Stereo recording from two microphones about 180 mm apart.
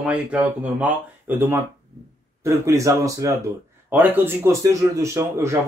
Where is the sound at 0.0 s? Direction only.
10° right (ahead or behind).